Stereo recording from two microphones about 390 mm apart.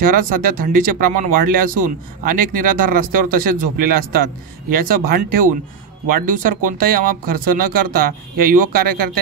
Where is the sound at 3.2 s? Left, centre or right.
Right.